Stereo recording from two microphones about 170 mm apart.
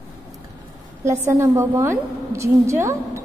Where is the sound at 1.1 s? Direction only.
15° right (ahead or behind).